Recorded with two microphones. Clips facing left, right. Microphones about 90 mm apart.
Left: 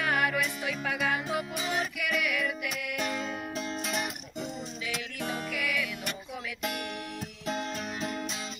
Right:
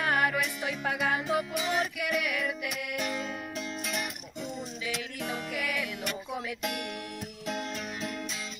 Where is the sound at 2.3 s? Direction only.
30° right (ahead or behind).